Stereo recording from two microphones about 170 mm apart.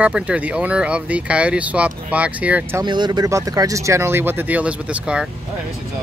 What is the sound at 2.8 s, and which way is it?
Speech, 25° right (ahead or behind).